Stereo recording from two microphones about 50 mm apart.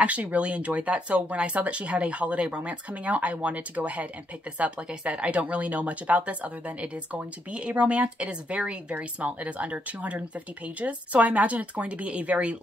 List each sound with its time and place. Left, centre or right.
0.0 s speech: right